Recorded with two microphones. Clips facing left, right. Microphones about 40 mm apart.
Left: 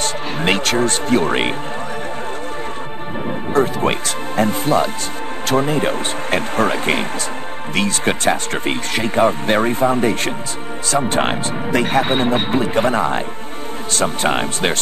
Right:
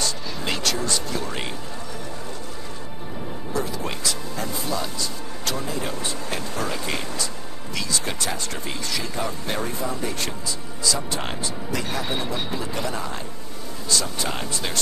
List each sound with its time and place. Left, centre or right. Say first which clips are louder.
0.0 s speech: left 8 dB; left
3.5 s speech: left 11 dB; left